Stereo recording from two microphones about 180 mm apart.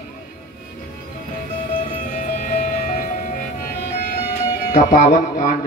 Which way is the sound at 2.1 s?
45° left (ahead or behind).